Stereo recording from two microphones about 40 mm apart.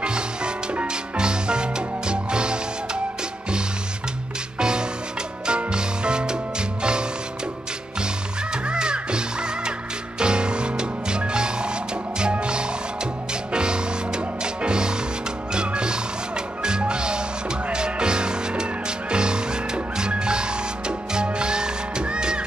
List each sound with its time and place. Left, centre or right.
0.0 s music: right
4.6 s music: centre
8.6 s music: right